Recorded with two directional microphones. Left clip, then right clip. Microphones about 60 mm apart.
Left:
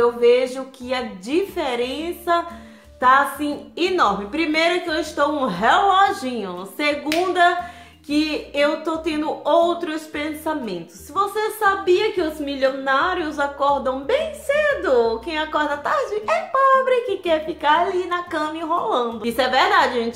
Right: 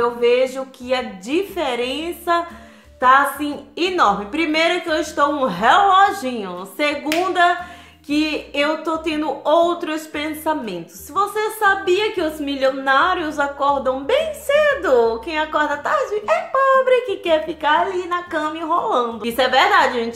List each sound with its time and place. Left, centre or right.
0.0 s a woman's voice: centre; by 13.5 s right
13.6 s a woman's voice: centre
14.0 s speech: right
15.2 s a woman's voice: centre; by 17.6 s right
17.6 s a woman's voice: centre
18.7 s a woman's voice: right; by 20.1 s centre